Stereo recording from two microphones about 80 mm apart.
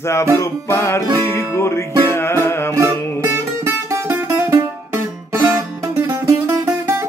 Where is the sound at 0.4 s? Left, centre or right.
Left.